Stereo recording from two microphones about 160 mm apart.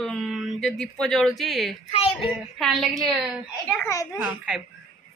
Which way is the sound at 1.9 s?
40° left (ahead or behind).